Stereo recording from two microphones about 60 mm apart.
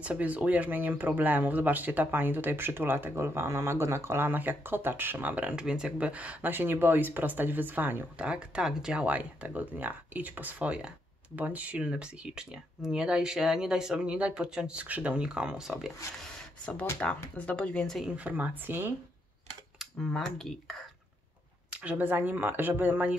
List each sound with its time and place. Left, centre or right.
0.0 s speech: right
3.2 s speech: right
4.3 s speech: right
6.5 s speech: right
8.2 s speech: centre
9.0 s speech: right
17.0 s speech: left
18.0 s speech: right
20.0 s speech: centre
21.8 s speech: right